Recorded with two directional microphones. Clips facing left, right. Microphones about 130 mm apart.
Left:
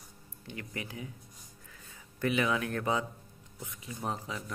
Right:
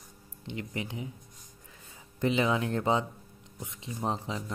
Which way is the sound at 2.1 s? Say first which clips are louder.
Right 3 dB; 25° right (ahead or behind).